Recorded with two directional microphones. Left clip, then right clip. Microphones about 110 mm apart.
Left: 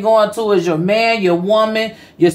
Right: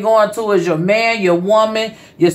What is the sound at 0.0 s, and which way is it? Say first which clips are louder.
Speech: even; 15° left (ahead or behind).